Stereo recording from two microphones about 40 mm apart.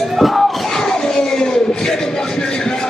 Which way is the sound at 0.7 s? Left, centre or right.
Centre.